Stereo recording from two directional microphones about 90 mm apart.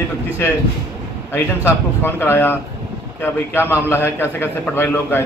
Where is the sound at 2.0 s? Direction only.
25° left (ahead or behind).